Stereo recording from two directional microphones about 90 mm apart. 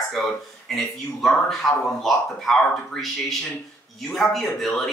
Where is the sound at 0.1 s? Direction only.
Centre (ahead or behind).